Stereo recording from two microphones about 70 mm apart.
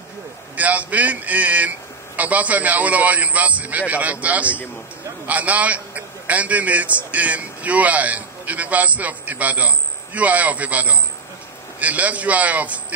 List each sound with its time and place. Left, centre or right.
0.6 s a man's voice: right